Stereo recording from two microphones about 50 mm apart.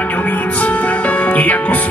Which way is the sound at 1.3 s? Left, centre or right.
Left.